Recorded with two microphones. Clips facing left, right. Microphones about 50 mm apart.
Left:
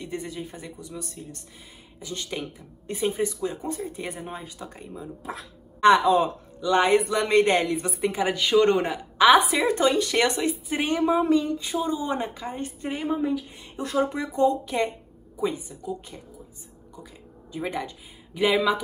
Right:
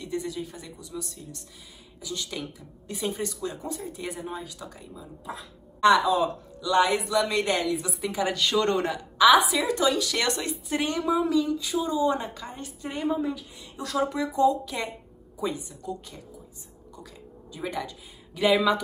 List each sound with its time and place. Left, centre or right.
0.0 s speech: left
3.6 s a woman's voice: left
5.2 s speech: left
5.8 s a woman's voice: left
8.3 s speech: centre
9.3 s a woman's voice: left
12.9 s speech: centre
15.8 s speech: centre
17.5 s speech: left